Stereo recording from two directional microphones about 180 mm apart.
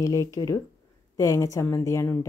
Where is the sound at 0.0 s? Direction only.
15° left (ahead or behind).